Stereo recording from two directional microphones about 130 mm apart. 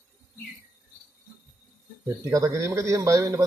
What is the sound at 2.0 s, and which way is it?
Speech, 25° right (ahead or behind).